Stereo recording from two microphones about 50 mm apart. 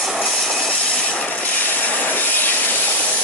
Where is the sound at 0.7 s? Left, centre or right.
Centre.